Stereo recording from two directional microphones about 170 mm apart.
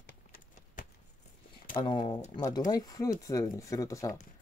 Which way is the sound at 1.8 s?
30° left (ahead or behind).